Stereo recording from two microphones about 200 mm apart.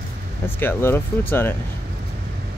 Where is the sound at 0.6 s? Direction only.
10° left (ahead or behind).